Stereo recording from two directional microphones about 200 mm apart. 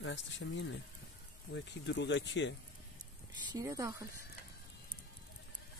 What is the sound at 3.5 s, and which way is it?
Speech, 15° right (ahead or behind).